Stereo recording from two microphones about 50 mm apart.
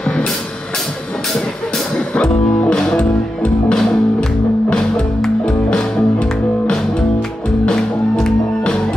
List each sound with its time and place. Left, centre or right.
0.0 s music: centre
2.0 s music: left